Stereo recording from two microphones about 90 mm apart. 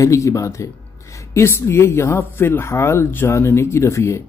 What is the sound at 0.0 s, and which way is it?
A woman's voice, 35° left (ahead or behind).